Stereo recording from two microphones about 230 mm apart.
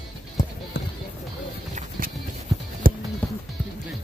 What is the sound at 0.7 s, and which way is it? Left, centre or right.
Music, left.